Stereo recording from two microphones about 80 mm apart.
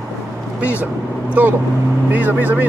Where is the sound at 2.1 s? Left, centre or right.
Right.